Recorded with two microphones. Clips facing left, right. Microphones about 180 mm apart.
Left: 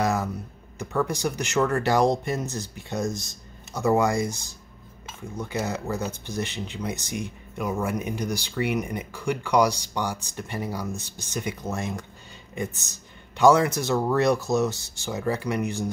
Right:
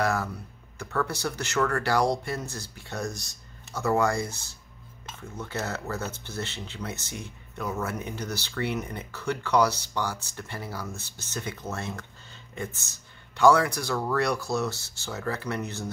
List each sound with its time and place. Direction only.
0.0 s speech: 20° left (ahead or behind)